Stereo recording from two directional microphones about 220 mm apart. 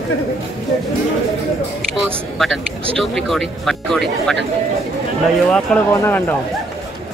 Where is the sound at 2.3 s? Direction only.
Centre (ahead or behind).